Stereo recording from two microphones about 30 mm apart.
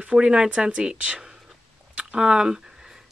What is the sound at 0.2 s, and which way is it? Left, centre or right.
Speech, right.